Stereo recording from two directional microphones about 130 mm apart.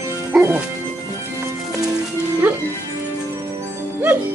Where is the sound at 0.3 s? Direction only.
15° right (ahead or behind).